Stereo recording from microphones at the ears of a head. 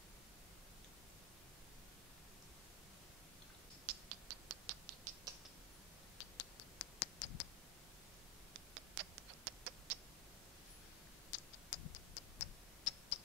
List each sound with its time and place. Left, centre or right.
3.8 s rodents: right
6.1 s tick: left
8.5 s tick-tock: right
11.2 s tick-tock: left